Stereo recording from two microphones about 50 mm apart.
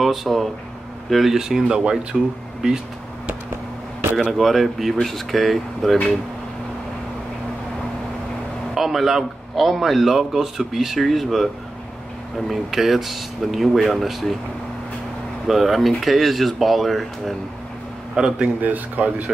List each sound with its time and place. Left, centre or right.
0.0 s speech: centre
4.2 s a man's voice: centre
8.7 s a man's voice: centre
15.4 s a man's voice: centre
18.1 s a man's voice: centre
18.6 s speech: right